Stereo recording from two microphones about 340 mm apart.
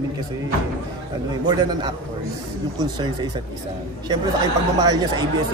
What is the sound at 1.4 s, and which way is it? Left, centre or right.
Speech, centre.